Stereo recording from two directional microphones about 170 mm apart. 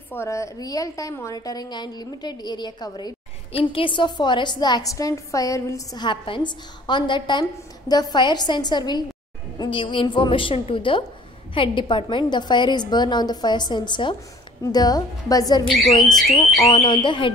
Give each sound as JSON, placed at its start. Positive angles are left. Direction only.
{"t": 0.1, "sound": "a woman's voice", "side_deg": 15}
{"t": 16.0, "sound": "speech", "side_deg": 5}
{"t": 16.7, "sound": "speech", "side_deg": 30}